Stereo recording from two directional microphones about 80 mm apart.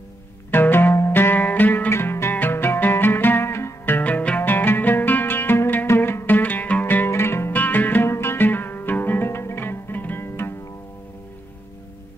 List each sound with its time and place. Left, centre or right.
0.5 s music: left